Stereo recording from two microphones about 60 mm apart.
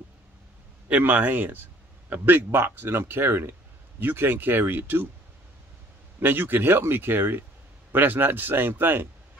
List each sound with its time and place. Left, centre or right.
0.8 s a man's voice: right
6.1 s a man's voice: right